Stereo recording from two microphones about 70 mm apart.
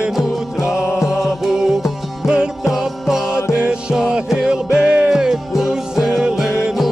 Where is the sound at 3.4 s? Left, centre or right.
Left.